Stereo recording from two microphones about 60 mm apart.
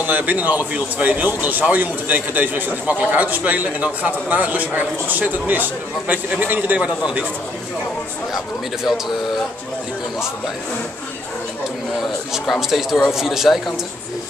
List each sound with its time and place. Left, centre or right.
0.0 s a man's voice: right
12.4 s speech: centre